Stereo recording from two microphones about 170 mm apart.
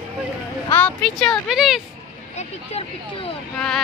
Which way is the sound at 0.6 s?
10° left (ahead or behind).